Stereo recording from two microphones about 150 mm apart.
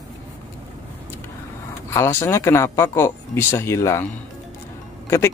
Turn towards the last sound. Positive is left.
turn(degrees=15)  # may be behind; listen again after turning